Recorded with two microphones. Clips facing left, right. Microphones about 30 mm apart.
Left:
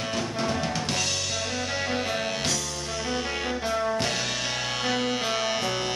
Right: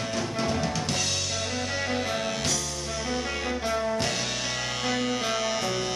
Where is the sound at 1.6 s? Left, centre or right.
Centre.